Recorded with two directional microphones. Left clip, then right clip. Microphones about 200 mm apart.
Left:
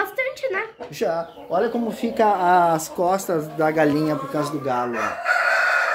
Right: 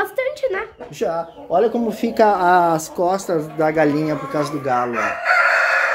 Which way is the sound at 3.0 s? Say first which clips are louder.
Right 2 dB; centre (ahead or behind).